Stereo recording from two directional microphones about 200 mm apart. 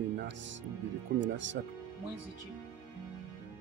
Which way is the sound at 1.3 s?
65° right (ahead or behind).